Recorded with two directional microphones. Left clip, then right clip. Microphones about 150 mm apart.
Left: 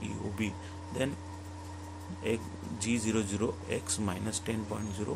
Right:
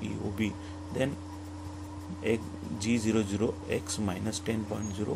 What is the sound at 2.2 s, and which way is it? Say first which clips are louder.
Speech: right 3 dB; 10° right (ahead or behind).